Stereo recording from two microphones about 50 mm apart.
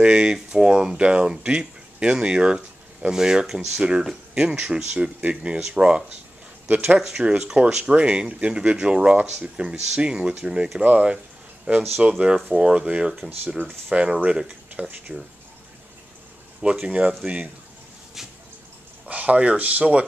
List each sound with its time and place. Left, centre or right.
0.0 s speech: centre
6.7 s speech: right
7.0 s speech: centre; by 9.7 s right
9.7 s speech: centre
14.7 s speech: right
16.8 s speech: right
19.0 s speech: right